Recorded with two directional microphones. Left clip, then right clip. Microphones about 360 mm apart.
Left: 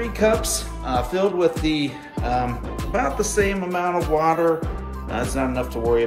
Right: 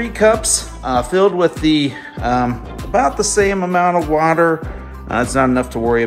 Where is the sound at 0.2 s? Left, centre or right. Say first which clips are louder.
Right 7 dB; centre.